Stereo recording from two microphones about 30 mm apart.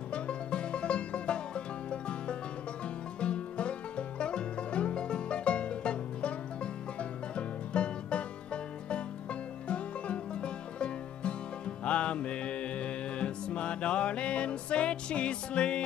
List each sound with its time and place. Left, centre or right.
0.1 s music: left